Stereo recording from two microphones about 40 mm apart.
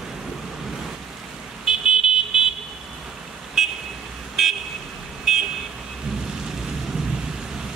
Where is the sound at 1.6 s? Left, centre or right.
Centre.